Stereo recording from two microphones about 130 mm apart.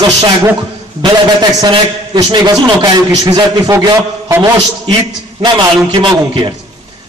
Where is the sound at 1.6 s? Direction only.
30° right (ahead or behind).